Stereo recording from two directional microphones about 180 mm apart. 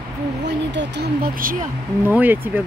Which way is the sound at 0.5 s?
75° right (ahead or behind).